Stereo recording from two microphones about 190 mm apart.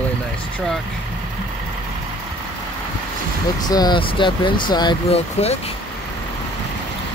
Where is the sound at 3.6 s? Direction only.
20° left (ahead or behind).